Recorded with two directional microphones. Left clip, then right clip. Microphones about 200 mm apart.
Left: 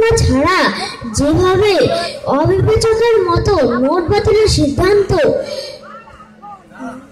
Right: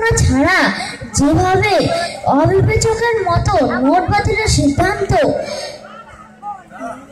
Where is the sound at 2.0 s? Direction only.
30° left (ahead or behind).